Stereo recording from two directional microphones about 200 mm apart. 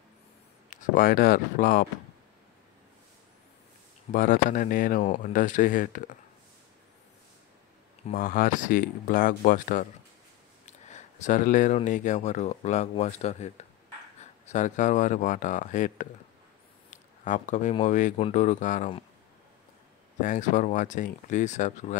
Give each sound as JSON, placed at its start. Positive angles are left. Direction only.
{"t": 0.7, "sound": "speech", "side_deg": 40}
{"t": 4.1, "sound": "speech", "side_deg": 45}
{"t": 8.1, "sound": "speech", "side_deg": 45}
{"t": 16.9, "sound": "a sound", "side_deg": 40}
{"t": 17.8, "sound": "speech", "side_deg": 40}
{"t": 20.2, "sound": "speech", "side_deg": 40}